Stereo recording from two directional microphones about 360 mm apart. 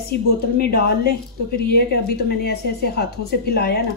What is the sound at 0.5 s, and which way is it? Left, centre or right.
A woman's voice, left.